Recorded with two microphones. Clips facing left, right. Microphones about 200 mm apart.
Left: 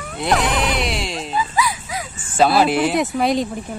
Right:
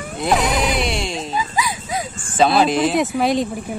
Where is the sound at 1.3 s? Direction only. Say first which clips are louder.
Left 4 dB; 15° right (ahead or behind).